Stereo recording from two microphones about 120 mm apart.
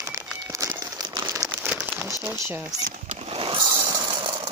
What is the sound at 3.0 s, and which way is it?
Vehicle, 60° right (ahead or behind).